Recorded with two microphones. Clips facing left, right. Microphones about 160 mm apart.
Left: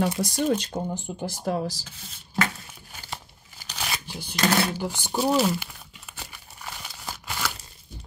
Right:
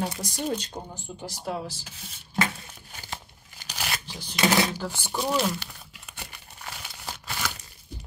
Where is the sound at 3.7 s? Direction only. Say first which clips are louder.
Left 1 dB; 5° right (ahead or behind).